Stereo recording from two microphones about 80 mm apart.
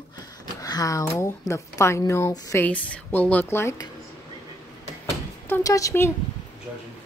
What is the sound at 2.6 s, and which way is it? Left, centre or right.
Speech, centre.